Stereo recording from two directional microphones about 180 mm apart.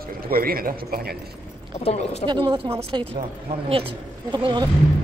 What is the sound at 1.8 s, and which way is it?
Speech, 35° left (ahead or behind).